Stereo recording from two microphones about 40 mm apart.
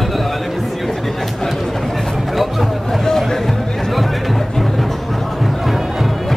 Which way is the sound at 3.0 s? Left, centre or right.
Centre.